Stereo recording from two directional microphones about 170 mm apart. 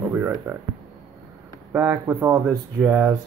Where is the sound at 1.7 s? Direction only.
10° right (ahead or behind).